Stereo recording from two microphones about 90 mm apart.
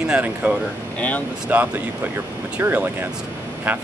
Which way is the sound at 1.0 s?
15° left (ahead or behind).